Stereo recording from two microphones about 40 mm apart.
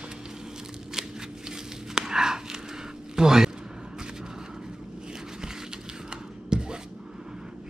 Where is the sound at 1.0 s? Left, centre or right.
Centre.